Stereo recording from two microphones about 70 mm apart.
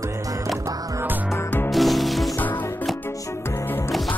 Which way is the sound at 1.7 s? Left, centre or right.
Centre.